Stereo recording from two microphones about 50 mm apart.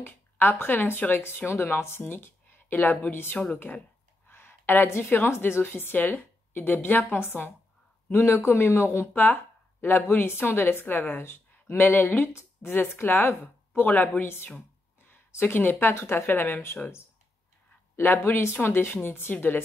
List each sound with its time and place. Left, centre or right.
0.0 s a woman's voice: left
4.3 s a sound: left
4.8 s a woman's voice: left
8.1 s a man's voice: left
9.1 s a woman's voice: left
14.2 s a woman's voice: left
15.0 s a sound: left
15.8 s a woman's voice: left
17.9 s a woman's voice: left